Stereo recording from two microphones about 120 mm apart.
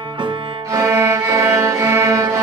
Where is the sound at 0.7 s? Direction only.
25° right (ahead or behind).